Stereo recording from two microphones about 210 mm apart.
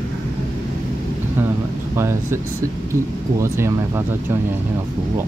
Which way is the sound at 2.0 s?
15° right (ahead or behind).